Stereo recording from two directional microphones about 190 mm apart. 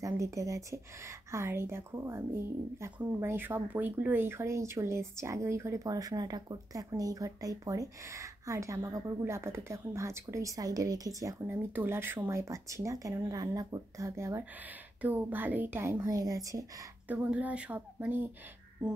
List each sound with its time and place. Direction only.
0.0 s a woman's voice: 15° right (ahead or behind)
17.1 s a woman's voice: 10° right (ahead or behind)